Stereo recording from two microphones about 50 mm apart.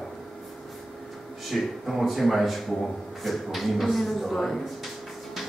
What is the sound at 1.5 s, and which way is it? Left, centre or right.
A man's voice, centre.